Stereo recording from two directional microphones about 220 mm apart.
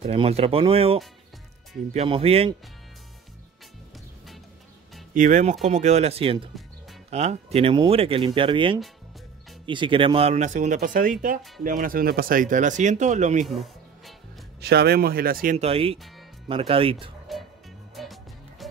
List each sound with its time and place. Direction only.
0.0 s speech: 30° right (ahead or behind)
5.1 s speech: 35° right (ahead or behind)
13.5 s music: centre (ahead or behind)
14.6 s speech: 45° right (ahead or behind); by 16.9 s 25° right (ahead or behind)
17.3 s music: centre (ahead or behind)